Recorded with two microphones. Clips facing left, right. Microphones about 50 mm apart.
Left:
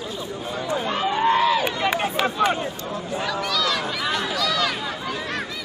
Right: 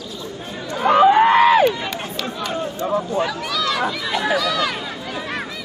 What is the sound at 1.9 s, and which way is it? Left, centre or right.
Run, left.